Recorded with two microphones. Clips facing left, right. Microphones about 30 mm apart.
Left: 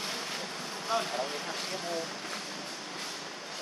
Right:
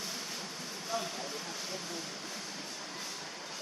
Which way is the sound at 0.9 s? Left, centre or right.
Left.